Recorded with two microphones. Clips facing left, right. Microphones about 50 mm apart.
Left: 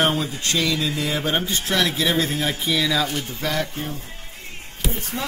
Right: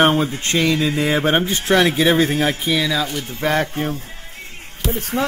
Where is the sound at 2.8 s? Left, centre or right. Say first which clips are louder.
Right 1 dB; centre.